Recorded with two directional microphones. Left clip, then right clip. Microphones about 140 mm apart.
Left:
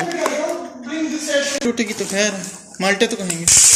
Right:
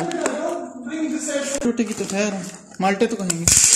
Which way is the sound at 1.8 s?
30° right (ahead or behind).